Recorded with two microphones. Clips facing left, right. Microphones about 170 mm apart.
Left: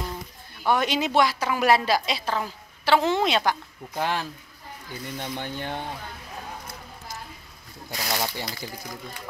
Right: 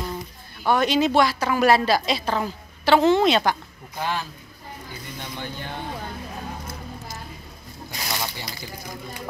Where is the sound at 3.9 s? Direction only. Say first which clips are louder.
Left 1 dB; 70° left (ahead or behind).